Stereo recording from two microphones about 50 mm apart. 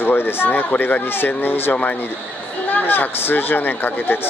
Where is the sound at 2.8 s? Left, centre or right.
Left.